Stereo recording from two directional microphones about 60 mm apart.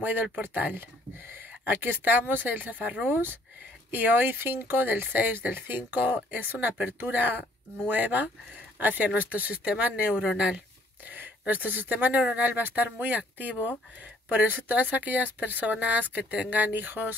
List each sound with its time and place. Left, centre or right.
0.0 s speech: right
3.1 s speech: right; by 10.6 s centre
11.1 s speech: right